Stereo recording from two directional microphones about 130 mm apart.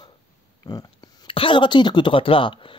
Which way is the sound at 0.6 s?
30° left (ahead or behind).